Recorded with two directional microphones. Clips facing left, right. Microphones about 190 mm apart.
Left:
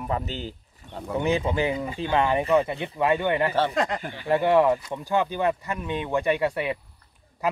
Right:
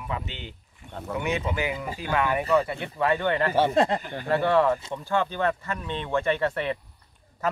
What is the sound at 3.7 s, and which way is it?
Speech, 30° right (ahead or behind).